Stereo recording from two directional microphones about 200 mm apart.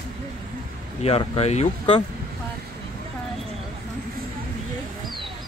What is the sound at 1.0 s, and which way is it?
Speech, 30° left (ahead or behind).